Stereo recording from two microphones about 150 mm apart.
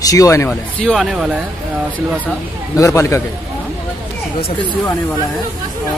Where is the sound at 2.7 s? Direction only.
20° left (ahead or behind).